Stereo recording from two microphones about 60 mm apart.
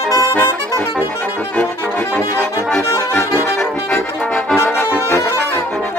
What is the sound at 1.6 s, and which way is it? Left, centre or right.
Brass instrument, left.